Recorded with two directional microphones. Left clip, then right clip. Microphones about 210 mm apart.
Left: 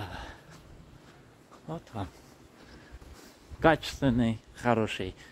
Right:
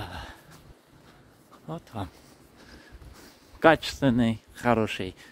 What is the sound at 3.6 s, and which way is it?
Speech, 30° right (ahead or behind).